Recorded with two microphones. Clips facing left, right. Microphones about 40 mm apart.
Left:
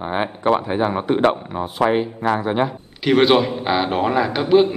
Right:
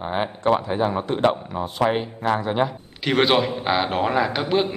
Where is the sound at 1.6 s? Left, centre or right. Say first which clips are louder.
Left 3 dB; centre.